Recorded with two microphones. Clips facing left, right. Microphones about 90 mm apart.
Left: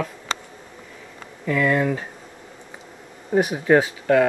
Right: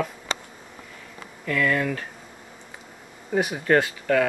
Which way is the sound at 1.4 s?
10° left (ahead or behind).